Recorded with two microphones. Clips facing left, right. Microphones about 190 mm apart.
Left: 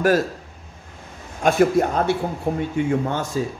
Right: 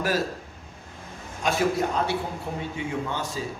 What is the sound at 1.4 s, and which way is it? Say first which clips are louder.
Speech: left 7 dB; 55° left (ahead or behind).